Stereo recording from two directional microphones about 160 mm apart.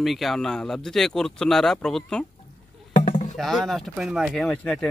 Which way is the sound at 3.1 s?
45° left (ahead or behind).